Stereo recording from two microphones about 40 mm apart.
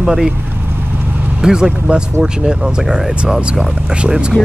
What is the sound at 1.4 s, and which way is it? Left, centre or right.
Speech, centre.